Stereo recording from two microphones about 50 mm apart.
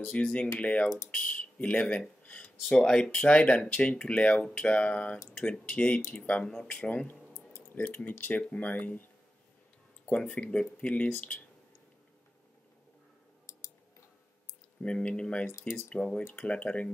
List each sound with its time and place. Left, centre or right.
0.0 s speech: centre
1.1 s a sound: left
2.7 s speech: centre
7.1 s a sound: left
8.5 s speech: left
10.1 s speech: left
14.8 s speech: centre